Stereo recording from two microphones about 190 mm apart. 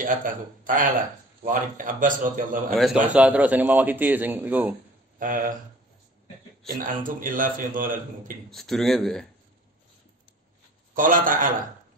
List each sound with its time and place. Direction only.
0.0 s a man's voice: 45° right (ahead or behind)
2.7 s speech: centre (ahead or behind)
5.2 s a man's voice: 45° right (ahead or behind)
6.7 s a man's voice: 45° right (ahead or behind)
8.5 s speech: centre (ahead or behind)
11.0 s a man's voice: 45° right (ahead or behind)